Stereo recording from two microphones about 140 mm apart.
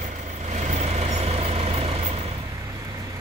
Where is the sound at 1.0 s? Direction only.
45° right (ahead or behind).